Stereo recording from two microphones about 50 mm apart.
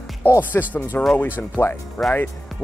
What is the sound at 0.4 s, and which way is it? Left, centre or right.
Speech, left.